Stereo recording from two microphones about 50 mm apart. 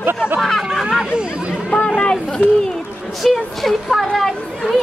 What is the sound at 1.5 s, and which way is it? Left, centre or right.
Chatter, left.